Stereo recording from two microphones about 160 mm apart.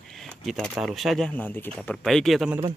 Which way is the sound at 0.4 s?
Centre (ahead or behind).